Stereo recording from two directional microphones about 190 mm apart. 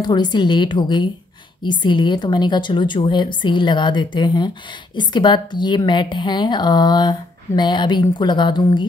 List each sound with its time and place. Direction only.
0.0 s a woman's voice: 25° left (ahead or behind)